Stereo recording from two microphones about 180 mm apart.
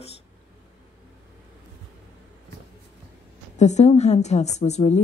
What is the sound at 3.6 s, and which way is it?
Speech, 40° left (ahead or behind).